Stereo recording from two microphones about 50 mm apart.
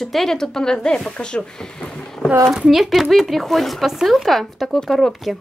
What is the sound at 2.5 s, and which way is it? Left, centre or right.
A woman's voice, centre.